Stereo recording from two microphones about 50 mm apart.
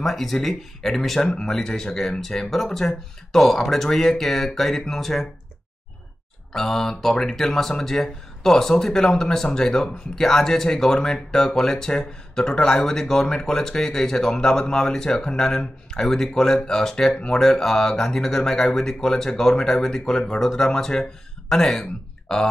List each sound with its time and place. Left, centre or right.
0.0 s speech: centre
6.5 s speech: centre